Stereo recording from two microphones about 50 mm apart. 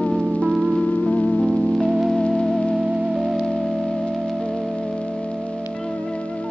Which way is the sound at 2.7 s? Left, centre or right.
Centre.